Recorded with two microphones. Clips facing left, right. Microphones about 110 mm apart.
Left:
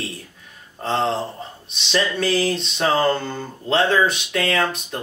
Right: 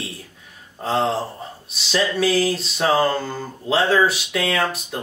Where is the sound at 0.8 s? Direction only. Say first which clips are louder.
Right 1 dB; 5° right (ahead or behind).